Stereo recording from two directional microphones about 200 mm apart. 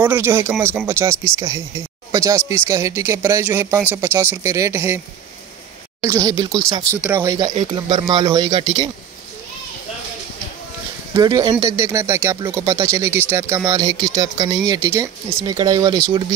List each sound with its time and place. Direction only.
0.0 s speech: 10° right (ahead or behind)
7.5 s speech: 30° right (ahead or behind)
8.1 s speech: 20° right (ahead or behind)
11.1 s speech: 20° right (ahead or behind)